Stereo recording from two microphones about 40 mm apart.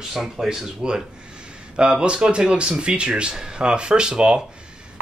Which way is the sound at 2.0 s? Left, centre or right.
Right.